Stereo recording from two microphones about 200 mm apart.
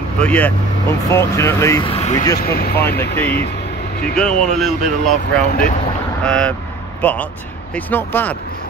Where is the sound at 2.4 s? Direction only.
50° left (ahead or behind).